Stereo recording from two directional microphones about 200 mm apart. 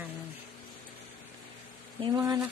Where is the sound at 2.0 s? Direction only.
20° right (ahead or behind).